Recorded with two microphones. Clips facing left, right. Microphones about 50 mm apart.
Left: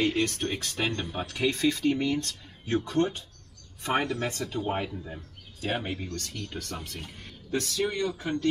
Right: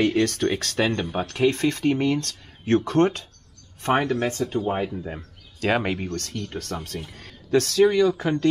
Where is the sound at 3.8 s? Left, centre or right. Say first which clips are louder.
Right 6 dB; right.